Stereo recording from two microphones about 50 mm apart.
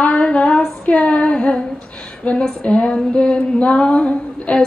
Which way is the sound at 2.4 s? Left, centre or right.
Centre.